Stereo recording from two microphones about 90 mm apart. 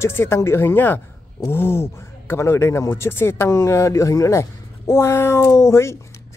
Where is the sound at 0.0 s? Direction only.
30° left (ahead or behind).